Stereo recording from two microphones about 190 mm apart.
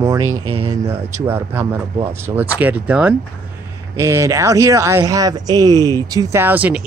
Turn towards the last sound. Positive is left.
turn(degrees=-10)  # may be behind; listen again after turning